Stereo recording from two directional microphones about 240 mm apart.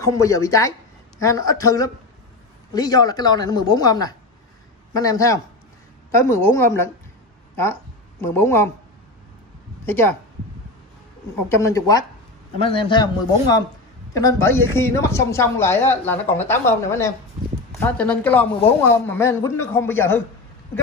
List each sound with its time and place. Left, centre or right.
0.0 s speech: centre
8.3 s speech: centre
9.8 s speech: centre
11.5 s a man's voice: centre